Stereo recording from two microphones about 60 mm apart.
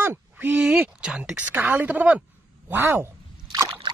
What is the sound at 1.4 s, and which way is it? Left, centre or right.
Speech, right.